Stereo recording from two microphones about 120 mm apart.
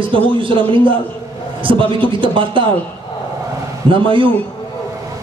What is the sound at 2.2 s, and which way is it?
Speech, 45° right (ahead or behind).